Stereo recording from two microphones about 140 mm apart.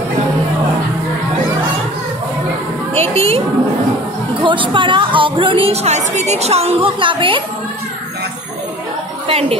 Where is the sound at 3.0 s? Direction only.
45° right (ahead or behind).